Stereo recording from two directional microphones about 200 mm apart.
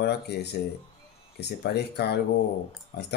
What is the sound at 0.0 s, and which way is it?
Speech, 55° left (ahead or behind).